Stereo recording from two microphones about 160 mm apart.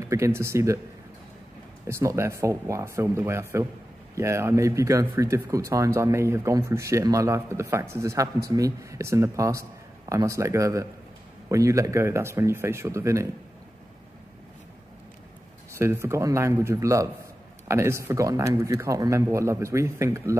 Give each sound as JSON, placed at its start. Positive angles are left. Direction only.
{"t": 0.0, "sound": "speech", "side_deg": -20}
{"t": 1.9, "sound": "speech", "side_deg": -15}
{"t": 15.8, "sound": "speech", "side_deg": -15}